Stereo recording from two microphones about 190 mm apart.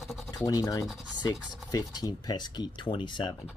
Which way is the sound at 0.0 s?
Centre (ahead or behind).